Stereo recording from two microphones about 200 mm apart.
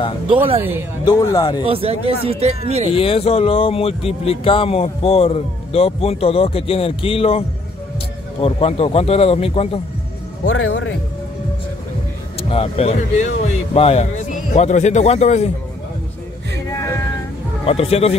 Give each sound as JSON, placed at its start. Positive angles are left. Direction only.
{"t": 0.6, "sound": "speech", "side_deg": -10}
{"t": 1.0, "sound": "speech", "side_deg": 20}
{"t": 1.7, "sound": "speech", "side_deg": -30}
{"t": 2.9, "sound": "speech", "side_deg": 30}
{"t": 10.7, "sound": "speech", "side_deg": 60}
{"t": 12.4, "sound": "speech", "side_deg": 30}
{"t": 17.6, "sound": "speech", "side_deg": 30}